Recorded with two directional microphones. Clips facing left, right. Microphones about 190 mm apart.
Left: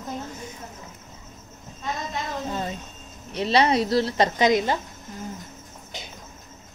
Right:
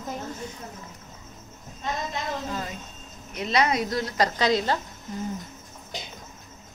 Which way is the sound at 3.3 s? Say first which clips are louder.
Left 4 dB; 30° left (ahead or behind).